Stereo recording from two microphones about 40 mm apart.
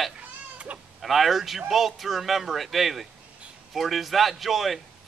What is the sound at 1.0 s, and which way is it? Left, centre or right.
A man's voice, centre.